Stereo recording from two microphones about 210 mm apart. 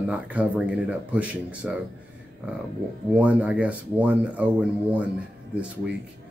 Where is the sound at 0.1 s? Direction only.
5° right (ahead or behind).